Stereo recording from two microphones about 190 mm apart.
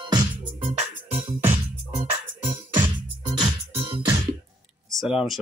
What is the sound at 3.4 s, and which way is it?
Music, 25° right (ahead or behind).